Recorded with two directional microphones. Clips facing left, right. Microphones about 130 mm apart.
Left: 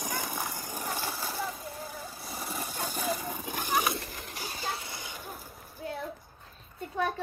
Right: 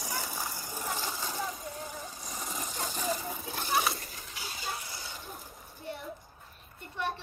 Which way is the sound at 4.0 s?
60° left (ahead or behind).